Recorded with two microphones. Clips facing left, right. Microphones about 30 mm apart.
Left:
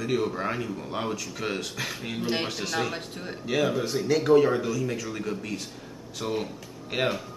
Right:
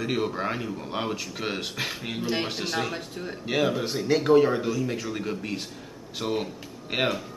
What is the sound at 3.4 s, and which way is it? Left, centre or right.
A man's voice, centre.